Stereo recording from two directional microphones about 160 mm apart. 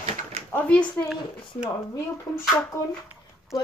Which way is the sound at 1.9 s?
20° left (ahead or behind).